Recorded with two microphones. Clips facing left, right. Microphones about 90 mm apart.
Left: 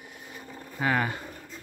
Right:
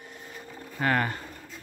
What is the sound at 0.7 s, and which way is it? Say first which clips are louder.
Speech: right 1 dB; 5° left (ahead or behind).